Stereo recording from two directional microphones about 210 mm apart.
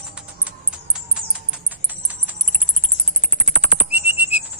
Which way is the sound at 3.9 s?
10° right (ahead or behind).